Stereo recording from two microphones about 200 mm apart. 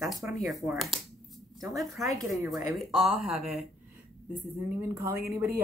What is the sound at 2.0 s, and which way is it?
Speech, 15° right (ahead or behind).